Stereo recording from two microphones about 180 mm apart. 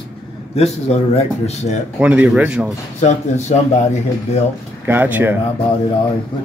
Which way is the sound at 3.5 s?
40° left (ahead or behind).